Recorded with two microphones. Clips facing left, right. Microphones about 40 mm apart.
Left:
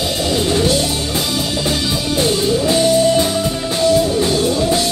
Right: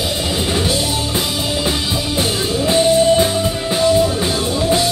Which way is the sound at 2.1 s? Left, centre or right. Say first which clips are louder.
Left 4 dB; centre.